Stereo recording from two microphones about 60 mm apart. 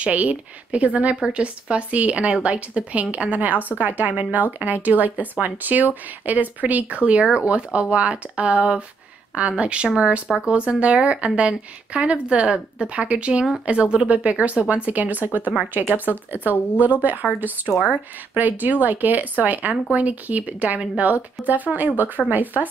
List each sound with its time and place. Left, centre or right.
0.0 s speech: right